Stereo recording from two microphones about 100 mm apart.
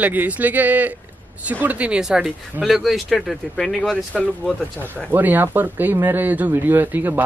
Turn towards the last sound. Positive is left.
turn(degrees=-20)  # may be behind; listen again after turning